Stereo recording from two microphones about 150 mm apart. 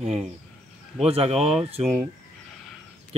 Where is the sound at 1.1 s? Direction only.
40° right (ahead or behind).